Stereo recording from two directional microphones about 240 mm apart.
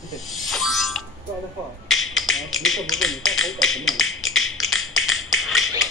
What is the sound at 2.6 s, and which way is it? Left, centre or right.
Tap, centre.